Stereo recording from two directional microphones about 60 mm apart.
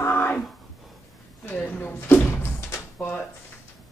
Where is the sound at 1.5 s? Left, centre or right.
Left.